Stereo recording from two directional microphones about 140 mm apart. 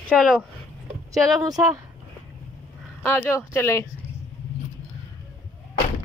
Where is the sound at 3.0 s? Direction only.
15° left (ahead or behind).